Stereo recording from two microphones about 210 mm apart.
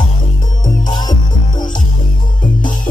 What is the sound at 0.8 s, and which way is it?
Music, 20° left (ahead or behind).